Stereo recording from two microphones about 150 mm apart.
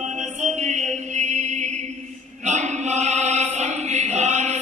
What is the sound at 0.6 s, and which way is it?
Mantra, 50° right (ahead or behind).